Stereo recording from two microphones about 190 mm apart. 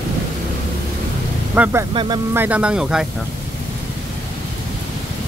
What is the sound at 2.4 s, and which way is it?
Speech, 5° right (ahead or behind).